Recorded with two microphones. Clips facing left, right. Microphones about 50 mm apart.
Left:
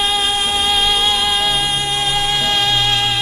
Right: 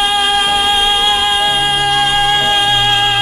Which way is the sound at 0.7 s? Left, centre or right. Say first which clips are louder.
Right 3 dB; right.